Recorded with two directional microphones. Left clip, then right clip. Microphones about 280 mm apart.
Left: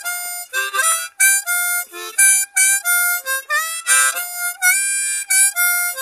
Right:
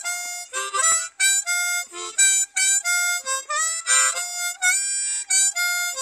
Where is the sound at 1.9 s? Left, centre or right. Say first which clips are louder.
Left 5 dB; centre.